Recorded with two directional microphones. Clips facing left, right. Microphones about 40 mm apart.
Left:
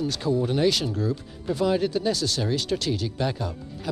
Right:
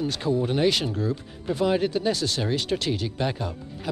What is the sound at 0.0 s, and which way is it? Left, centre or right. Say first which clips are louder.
Speech: even; right.